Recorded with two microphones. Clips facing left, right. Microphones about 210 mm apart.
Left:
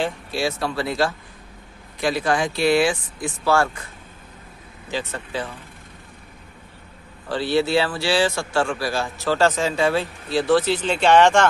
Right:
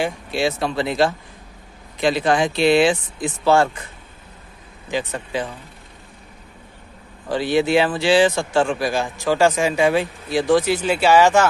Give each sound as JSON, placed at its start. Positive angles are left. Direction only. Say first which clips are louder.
{"t": 0.0, "sound": "speech", "louder": "right 3 dB", "side_deg": -20}
{"t": 4.9, "sound": "speech", "louder": "right 3 dB", "side_deg": -15}
{"t": 7.2, "sound": "speech", "louder": "right 2 dB", "side_deg": -15}